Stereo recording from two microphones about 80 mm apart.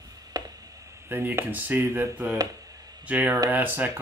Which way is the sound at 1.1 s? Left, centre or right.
Right.